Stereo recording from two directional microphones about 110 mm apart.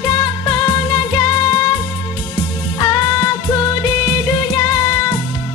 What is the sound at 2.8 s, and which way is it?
Music, 35° left (ahead or behind).